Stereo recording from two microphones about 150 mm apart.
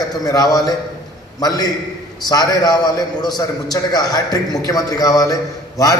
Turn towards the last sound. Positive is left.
turn(degrees=25)  # may be behind; listen again after turning